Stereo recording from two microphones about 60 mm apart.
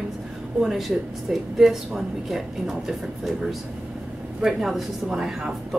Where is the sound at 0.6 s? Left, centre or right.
Centre.